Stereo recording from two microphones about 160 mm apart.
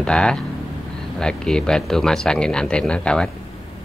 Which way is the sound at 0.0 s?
5° left (ahead or behind).